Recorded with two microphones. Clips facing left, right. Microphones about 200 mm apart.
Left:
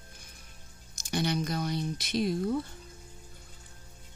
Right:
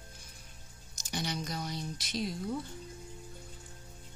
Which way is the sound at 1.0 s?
60° left (ahead or behind).